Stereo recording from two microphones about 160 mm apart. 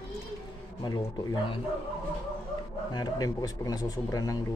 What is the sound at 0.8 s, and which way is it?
Speech, 25° left (ahead or behind).